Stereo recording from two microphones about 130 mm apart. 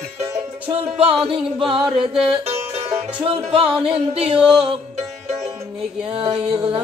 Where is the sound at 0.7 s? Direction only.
45° right (ahead or behind).